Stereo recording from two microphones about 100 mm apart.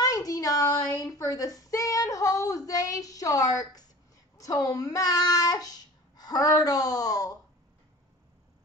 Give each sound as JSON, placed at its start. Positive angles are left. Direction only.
{"t": 0.0, "sound": "a child's voice", "side_deg": 35}